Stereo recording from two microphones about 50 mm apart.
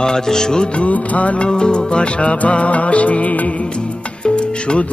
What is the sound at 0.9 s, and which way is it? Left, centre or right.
Music, left.